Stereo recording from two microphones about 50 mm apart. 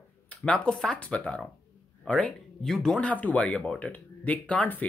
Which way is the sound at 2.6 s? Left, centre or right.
Centre.